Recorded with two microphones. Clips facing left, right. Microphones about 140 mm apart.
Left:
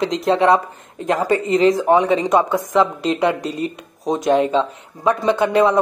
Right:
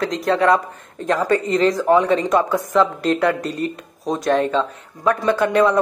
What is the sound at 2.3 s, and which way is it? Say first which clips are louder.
Speech: left 1 dB; 25° left (ahead or behind).